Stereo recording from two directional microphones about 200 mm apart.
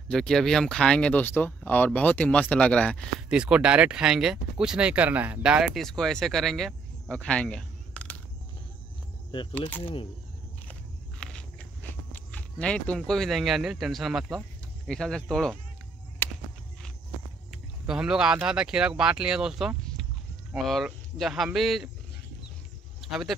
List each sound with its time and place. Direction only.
0.1 s speech: centre (ahead or behind)
9.5 s speech: 10° left (ahead or behind)
10.7 s walk: 5° left (ahead or behind)
12.1 s speech: 5° left (ahead or behind)
16.2 s a sound: 10° left (ahead or behind)
17.5 s speech: 5° right (ahead or behind)